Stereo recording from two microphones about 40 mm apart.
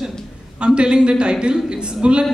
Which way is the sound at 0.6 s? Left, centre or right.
Right.